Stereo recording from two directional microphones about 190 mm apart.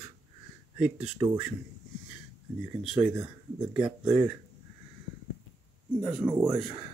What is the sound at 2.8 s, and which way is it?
Speech, 5° right (ahead or behind).